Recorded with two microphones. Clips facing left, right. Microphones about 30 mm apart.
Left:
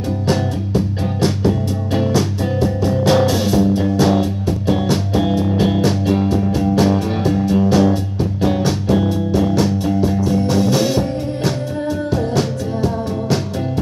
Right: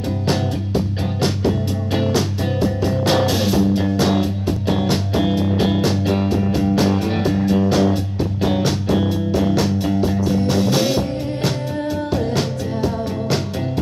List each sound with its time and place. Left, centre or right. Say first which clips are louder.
1.2 s music: left 2 dB; centre